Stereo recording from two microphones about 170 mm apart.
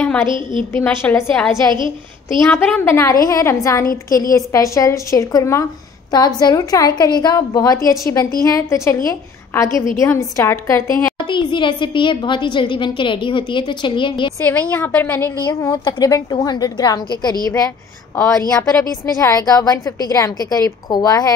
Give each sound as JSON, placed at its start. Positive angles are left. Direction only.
{"t": 0.0, "sound": "a sound", "side_deg": 10}
{"t": 0.3, "sound": "a woman's voice", "side_deg": -30}
{"t": 0.7, "sound": "a woman's voice", "side_deg": 10}
{"t": 14.4, "sound": "a woman's voice", "side_deg": 10}
{"t": 15.4, "sound": "a woman's voice", "side_deg": 20}
{"t": 19.2, "sound": "a woman's voice", "side_deg": 20}